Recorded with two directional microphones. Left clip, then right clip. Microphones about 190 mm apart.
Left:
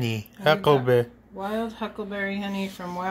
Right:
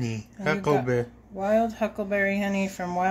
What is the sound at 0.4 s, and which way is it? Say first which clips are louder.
Speech: left 5 dB; 15° left (ahead or behind).